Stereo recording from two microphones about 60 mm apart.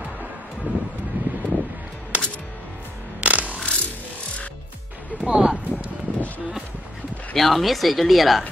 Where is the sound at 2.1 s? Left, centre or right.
Right.